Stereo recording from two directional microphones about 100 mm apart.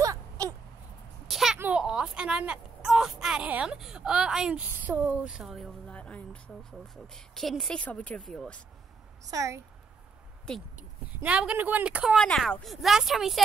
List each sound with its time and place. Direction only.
0.0 s a sound: 35° right (ahead or behind)
1.3 s a sound: centre (ahead or behind)
1.6 s a woman's voice: 10° right (ahead or behind)
5.9 s speech: 10° left (ahead or behind)
9.3 s speech: 35° right (ahead or behind)
10.5 s speech: 5° left (ahead or behind)
11.2 s a woman's voice: 10° right (ahead or behind)
12.2 s speech: 5° left (ahead or behind)